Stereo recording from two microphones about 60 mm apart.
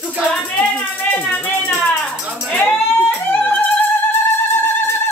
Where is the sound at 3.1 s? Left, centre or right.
Left.